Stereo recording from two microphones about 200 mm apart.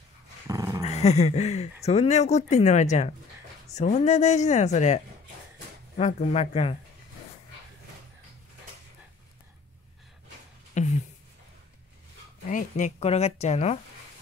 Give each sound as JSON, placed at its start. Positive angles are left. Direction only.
{"t": 0.5, "sound": "dog", "side_deg": -15}
{"t": 0.8, "sound": "speech", "side_deg": 35}
{"t": 10.8, "sound": "a sound", "side_deg": 35}
{"t": 12.4, "sound": "speech", "side_deg": 40}